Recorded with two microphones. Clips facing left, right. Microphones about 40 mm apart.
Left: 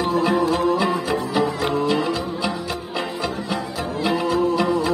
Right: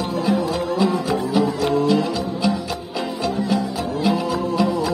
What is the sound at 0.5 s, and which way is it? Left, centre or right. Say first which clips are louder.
Music: left 1 dB; left.